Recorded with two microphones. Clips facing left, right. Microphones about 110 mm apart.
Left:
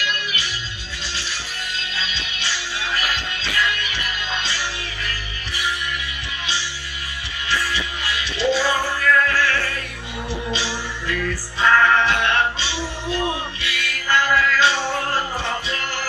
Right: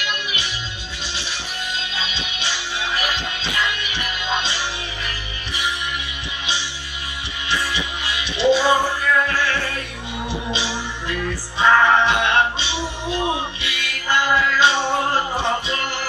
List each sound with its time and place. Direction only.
0.0 s music: 20° right (ahead or behind)
1.8 s music: 20° right (ahead or behind)
7.4 s music: 20° right (ahead or behind)